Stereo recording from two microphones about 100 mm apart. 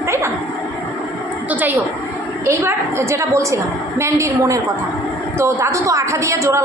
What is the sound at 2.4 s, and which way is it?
A woman's voice, 30° right (ahead or behind).